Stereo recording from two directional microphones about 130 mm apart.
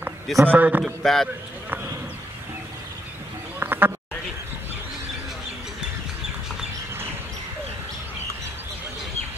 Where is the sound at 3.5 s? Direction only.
15° right (ahead or behind).